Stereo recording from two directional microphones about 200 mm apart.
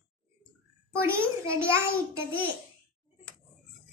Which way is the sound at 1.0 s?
15° right (ahead or behind).